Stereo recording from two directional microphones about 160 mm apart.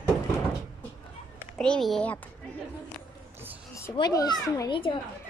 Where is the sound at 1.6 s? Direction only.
5° left (ahead or behind).